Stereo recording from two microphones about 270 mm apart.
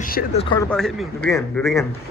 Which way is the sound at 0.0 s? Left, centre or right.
Left.